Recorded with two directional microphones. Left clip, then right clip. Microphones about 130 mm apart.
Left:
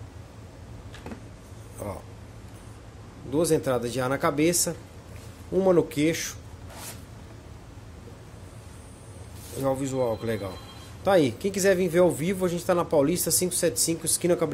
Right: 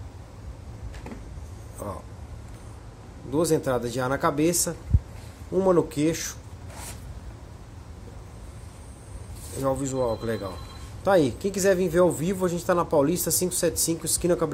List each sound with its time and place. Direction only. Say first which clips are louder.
3.3 s a man's voice: even; 10° left (ahead or behind)
9.6 s a man's voice: even; 15° left (ahead or behind)